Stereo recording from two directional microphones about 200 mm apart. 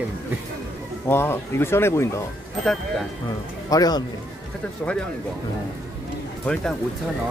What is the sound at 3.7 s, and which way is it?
Speech, 20° left (ahead or behind).